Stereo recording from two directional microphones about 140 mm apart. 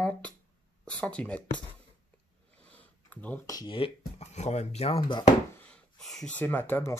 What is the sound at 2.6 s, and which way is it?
Sniff, 10° left (ahead or behind).